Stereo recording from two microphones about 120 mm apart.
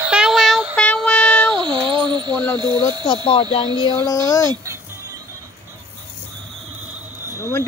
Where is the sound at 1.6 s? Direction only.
40° right (ahead or behind).